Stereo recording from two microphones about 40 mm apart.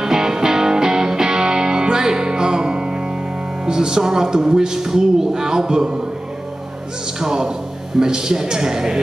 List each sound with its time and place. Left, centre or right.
0.0 s music: centre
3.6 s speech: centre
7.2 s speech: centre